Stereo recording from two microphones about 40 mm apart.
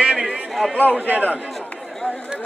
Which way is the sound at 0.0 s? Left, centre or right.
Right.